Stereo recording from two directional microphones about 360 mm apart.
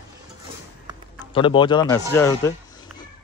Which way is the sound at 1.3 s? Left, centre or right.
Centre.